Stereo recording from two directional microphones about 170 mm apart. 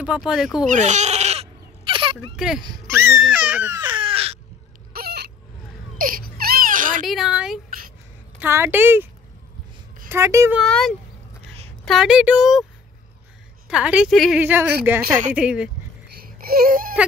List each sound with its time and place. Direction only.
0.0 s a woman's voice: 5° right (ahead or behind)
0.7 s baby cry: 45° right (ahead or behind)
2.3 s a woman's voice: 5° right (ahead or behind)
2.9 s baby cry: 15° right (ahead or behind)
3.8 s crow: 30° right (ahead or behind)
4.9 s a sound: 65° right (ahead or behind)
5.9 s baby cry: 55° right (ahead or behind)
7.1 s a woman's voice: 5° right (ahead or behind)
10.6 s a woman's voice: 5° left (ahead or behind)
13.7 s a woman's voice: 5° right (ahead or behind)
14.4 s a woman's voice: 10° right (ahead or behind)
16.3 s baby cry: 60° right (ahead or behind)